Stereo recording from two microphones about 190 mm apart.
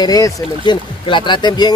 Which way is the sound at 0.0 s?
20° left (ahead or behind).